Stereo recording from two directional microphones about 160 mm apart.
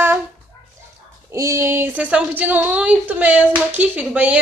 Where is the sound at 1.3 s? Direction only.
20° right (ahead or behind).